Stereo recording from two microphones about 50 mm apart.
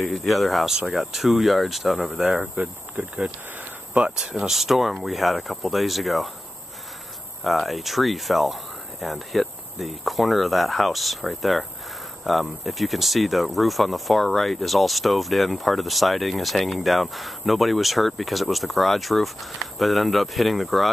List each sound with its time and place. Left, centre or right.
0.0 s speech: centre
2.5 s speech: right
4.4 s speech: centre
7.4 s speech: centre